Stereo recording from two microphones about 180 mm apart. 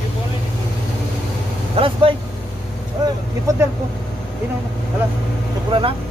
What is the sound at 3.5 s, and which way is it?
Speech, 15° right (ahead or behind).